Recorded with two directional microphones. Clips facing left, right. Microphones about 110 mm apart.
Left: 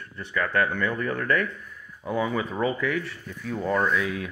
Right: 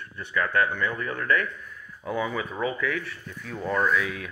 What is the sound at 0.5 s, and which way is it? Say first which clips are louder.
Speech: left 2 dB; 40° left (ahead or behind).